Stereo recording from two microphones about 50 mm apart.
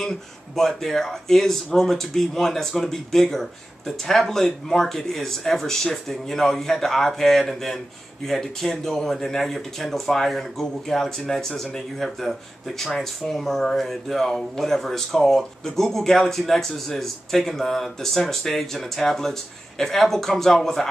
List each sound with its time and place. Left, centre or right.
0.0 s speech: centre